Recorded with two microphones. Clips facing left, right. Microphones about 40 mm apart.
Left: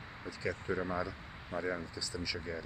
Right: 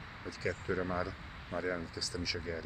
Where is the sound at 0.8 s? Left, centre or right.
Centre.